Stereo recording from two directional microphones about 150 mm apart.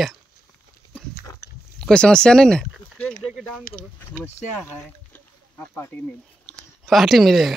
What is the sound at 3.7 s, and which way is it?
Speech, 65° left (ahead or behind).